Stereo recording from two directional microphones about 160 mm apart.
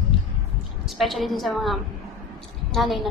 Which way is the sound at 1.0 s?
Centre (ahead or behind).